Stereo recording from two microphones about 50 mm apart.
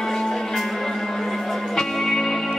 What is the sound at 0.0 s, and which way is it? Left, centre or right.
Music, centre.